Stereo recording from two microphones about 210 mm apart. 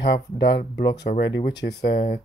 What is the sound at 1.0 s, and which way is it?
Speech, 55° left (ahead or behind).